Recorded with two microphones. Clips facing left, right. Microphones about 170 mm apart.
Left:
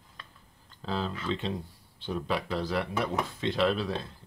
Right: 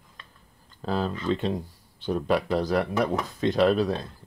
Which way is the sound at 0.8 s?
45° right (ahead or behind).